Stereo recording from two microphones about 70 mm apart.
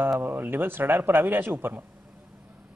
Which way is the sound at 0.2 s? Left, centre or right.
Right.